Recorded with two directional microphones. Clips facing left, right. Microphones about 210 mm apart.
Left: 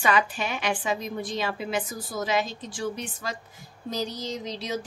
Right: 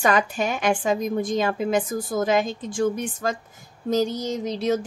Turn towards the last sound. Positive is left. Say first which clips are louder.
# right 8 dB
turn(degrees=-50)  # may be behind; listen again after turning